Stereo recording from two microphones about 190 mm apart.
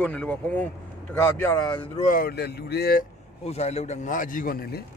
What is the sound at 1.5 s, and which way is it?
Speech, 20° left (ahead or behind).